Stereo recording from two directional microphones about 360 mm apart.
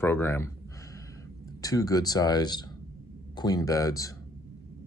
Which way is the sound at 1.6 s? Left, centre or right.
Centre.